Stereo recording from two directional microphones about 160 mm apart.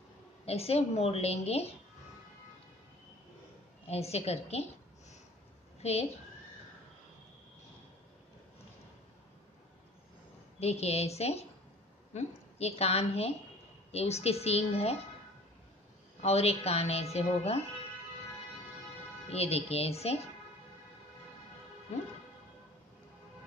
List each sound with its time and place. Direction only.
0.5 s a woman's voice: 40° left (ahead or behind)
3.8 s a woman's voice: 40° left (ahead or behind)
5.8 s a woman's voice: 40° left (ahead or behind)
10.6 s a woman's voice: 40° left (ahead or behind)
16.2 s a woman's voice: 40° left (ahead or behind)
19.2 s a woman's voice: 40° left (ahead or behind)